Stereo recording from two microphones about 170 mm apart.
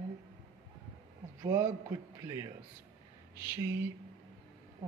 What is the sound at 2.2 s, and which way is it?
Speech, 20° right (ahead or behind).